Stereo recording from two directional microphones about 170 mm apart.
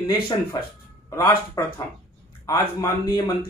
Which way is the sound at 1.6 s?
20° left (ahead or behind).